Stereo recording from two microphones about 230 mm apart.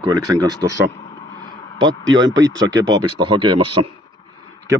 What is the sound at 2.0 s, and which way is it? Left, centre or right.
Speech, right.